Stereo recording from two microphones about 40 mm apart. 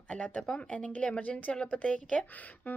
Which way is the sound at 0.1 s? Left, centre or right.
Left.